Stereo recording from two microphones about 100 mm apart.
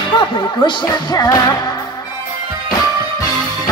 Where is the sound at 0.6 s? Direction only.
40° left (ahead or behind).